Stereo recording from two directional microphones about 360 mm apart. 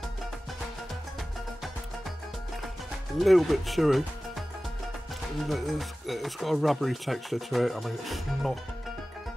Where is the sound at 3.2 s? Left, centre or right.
Centre.